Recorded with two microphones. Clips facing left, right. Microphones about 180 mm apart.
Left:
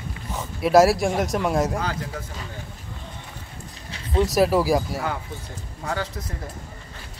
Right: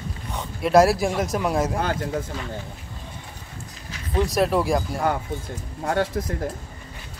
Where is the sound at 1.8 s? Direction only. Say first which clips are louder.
Right 4 dB; 55° right (ahead or behind).